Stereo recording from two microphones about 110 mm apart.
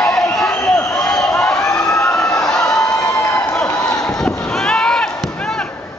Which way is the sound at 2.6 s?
30° left (ahead or behind).